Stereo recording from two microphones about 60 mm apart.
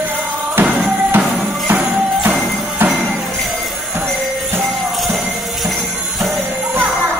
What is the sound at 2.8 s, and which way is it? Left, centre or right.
Music, right.